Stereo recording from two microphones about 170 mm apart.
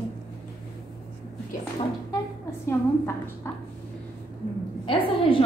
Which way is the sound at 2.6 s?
15° left (ahead or behind).